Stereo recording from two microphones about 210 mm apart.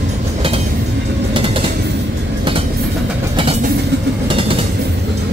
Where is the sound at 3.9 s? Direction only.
55° right (ahead or behind).